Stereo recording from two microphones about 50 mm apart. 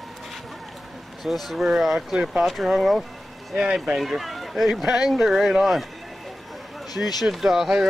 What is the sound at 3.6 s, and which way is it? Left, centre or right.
Speech, centre.